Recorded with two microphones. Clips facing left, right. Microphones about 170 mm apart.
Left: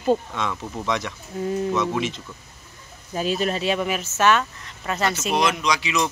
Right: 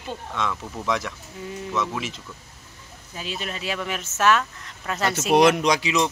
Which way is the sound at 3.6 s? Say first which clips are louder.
Left 6 dB; 25° left (ahead or behind).